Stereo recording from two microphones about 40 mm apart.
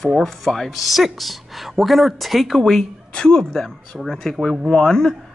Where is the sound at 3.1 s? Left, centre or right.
Centre.